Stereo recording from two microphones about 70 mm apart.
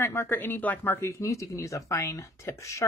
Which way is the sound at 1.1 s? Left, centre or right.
Left.